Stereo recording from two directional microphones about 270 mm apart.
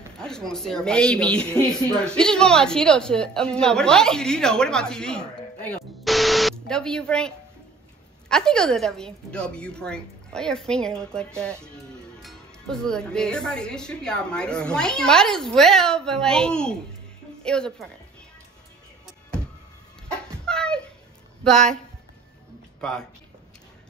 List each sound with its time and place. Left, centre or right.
0.2 s speech: centre
20.1 s a sound: centre
21.5 s speech: centre
22.8 s speech: centre